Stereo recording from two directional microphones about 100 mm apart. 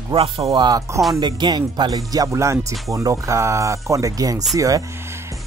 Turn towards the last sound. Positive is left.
turn(degrees=-35)  # may be behind; listen again after turning